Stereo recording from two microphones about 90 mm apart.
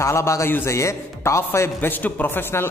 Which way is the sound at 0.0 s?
35° left (ahead or behind).